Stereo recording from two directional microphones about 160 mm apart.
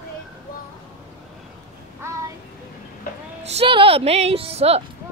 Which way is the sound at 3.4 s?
40° right (ahead or behind).